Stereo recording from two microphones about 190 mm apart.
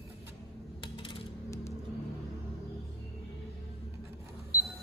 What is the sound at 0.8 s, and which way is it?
Coin, 25° left (ahead or behind).